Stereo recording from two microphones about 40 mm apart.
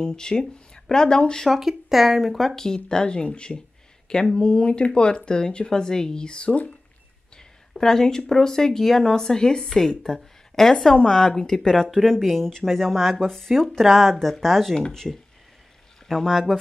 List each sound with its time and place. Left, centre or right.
0.0 s speech: centre
1.5 s speech: centre; by 6.6 s left
7.7 s speech: centre